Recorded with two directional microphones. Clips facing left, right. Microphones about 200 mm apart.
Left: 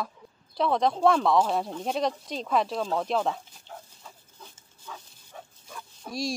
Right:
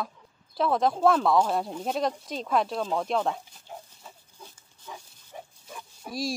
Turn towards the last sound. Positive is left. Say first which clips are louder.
# even
turn(degrees=-5)  # may be behind; listen again after turning